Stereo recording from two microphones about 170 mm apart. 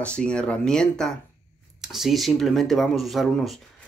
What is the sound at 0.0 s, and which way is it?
Speech, 5° left (ahead or behind).